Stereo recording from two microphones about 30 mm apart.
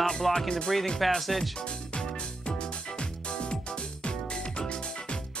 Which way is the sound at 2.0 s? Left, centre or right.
Left.